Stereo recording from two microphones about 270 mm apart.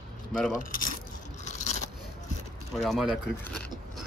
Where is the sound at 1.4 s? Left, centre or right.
Left.